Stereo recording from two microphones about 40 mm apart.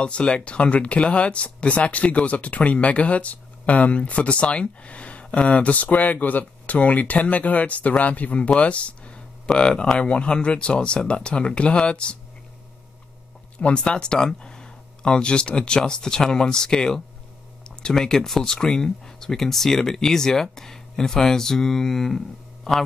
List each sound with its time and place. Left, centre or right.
0.0 s speech: left
13.6 s a man's voice: left; by 22.8 s centre